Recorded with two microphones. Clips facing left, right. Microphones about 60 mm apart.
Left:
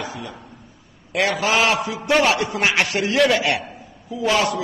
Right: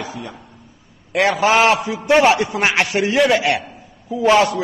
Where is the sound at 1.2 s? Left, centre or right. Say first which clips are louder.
Right 5 dB; right; by 3.5 s centre.